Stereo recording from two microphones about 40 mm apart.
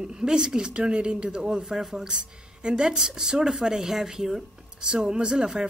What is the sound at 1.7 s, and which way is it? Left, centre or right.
Speech, centre.